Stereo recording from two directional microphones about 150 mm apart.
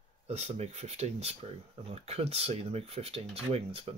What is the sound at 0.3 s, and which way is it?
Speech, 45° right (ahead or behind).